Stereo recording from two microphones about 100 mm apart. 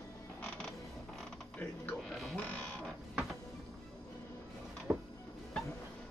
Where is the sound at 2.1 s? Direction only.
Centre (ahead or behind).